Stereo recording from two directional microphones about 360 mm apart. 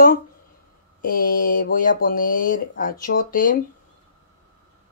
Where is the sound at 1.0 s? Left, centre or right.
Left.